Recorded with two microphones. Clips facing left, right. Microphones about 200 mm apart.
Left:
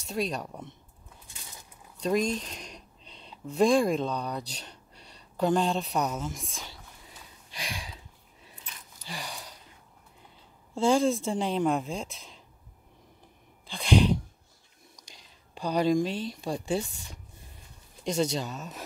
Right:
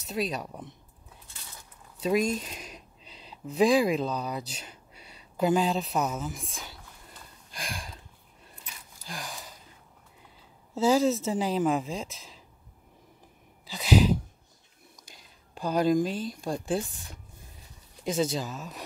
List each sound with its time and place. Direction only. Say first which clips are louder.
0.0 s speech: even; centre (ahead or behind)
2.0 s a sound: right 1 dB; 5° right (ahead or behind)
10.7 s speech: right 1 dB; 5° right (ahead or behind)
13.7 s sneeze: right 1 dB; 5° right (ahead or behind)
15.5 s speech: right 1 dB; centre (ahead or behind)